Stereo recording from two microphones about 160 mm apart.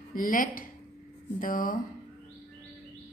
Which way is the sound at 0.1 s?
60° left (ahead or behind).